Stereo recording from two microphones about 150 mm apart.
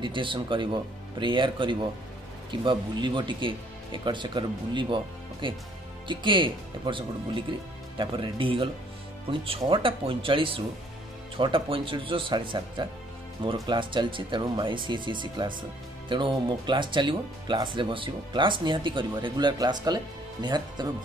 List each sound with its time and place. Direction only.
0.0 s speech: 35° right (ahead or behind)